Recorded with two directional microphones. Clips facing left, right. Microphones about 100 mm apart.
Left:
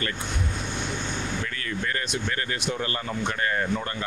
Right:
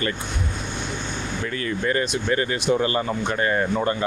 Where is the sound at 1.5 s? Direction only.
15° right (ahead or behind).